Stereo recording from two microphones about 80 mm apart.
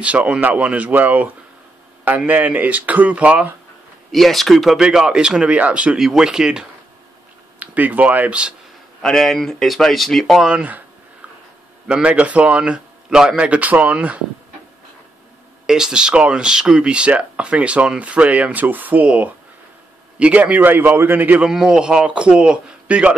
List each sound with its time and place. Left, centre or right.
0.0 s speech: centre
4.1 s speech: centre
7.5 s speech: centre
9.0 s speech: centre
10.4 s speech: centre
11.9 s speech: centre
15.6 s speech: centre; by 21.5 s right
21.5 s speech: centre